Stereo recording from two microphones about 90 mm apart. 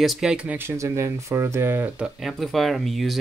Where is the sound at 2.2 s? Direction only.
Centre (ahead or behind).